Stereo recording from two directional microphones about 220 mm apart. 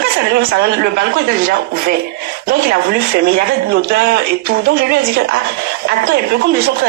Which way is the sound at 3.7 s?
50° right (ahead or behind).